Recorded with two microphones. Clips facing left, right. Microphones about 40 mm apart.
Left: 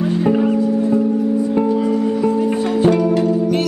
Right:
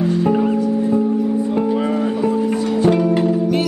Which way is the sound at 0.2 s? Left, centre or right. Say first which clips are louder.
Left 3 dB; centre.